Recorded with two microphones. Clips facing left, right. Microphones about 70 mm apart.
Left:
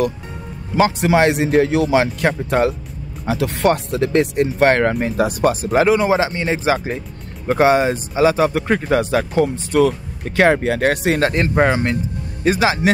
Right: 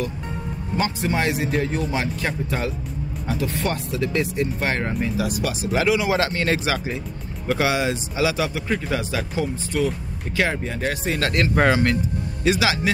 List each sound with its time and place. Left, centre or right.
0.7 s a man's voice: left
1.2 s speech: left
2.2 s speech: left
3.3 s speech: left
6.1 s speech: centre
6.6 s speech: left
11.1 s speech: left
11.7 s speech: centre
12.4 s speech: left